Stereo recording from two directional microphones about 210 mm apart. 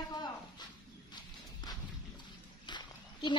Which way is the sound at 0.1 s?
20° left (ahead or behind).